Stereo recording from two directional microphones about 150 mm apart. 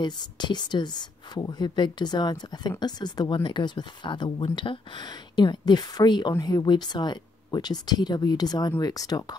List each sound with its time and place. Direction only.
0.0 s speech: 30° left (ahead or behind)